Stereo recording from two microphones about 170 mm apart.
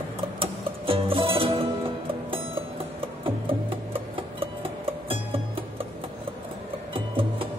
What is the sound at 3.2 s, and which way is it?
Music, 30° right (ahead or behind).